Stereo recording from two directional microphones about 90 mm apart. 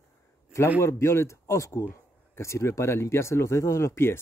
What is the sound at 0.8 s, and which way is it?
Speech, 30° left (ahead or behind).